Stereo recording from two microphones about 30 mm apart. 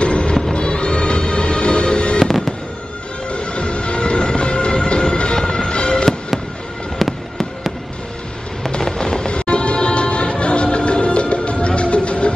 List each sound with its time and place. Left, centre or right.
0.0 s music: left
3.3 s music: left
5.3 s music: left
7.0 s fireworks: centre
8.7 s music: left